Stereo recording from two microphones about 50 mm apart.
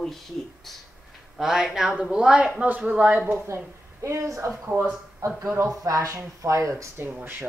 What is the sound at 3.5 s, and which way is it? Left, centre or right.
A woman's voice, right.